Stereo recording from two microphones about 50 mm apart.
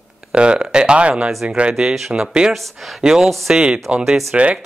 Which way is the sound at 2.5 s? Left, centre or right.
Centre.